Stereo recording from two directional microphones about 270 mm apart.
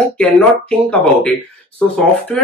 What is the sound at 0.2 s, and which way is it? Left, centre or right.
Speech, centre.